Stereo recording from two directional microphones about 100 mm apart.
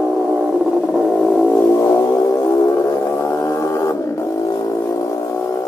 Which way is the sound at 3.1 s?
30° left (ahead or behind).